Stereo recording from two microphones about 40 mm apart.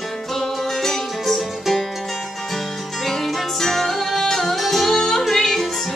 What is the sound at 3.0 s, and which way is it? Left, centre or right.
Music, centre.